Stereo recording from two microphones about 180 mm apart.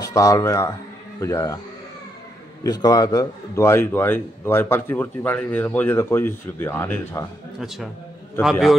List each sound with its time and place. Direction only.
0.0 s a man's voice: 20° left (ahead or behind)
2.6 s a man's voice: 20° left (ahead or behind)
7.6 s a man's voice: centre (ahead or behind)